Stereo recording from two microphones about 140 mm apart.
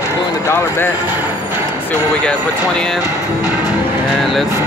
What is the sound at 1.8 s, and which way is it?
Speech, 5° left (ahead or behind).